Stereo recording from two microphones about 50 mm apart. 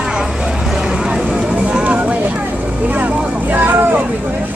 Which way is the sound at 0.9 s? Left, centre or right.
Centre.